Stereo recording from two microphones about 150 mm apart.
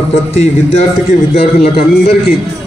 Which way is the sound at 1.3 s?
40° left (ahead or behind).